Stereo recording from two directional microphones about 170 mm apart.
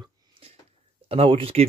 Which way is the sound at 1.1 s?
35° right (ahead or behind).